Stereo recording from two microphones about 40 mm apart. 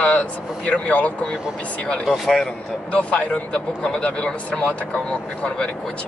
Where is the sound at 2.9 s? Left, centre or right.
Left.